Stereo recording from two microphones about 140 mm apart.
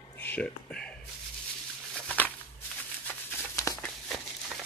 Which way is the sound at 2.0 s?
10° left (ahead or behind).